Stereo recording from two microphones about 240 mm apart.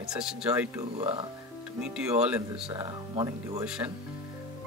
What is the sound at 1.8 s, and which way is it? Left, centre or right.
Speech, centre.